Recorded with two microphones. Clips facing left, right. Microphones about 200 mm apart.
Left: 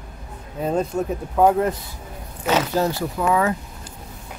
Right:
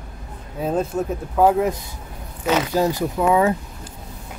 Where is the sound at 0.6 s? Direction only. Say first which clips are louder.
Even; 5° right (ahead or behind).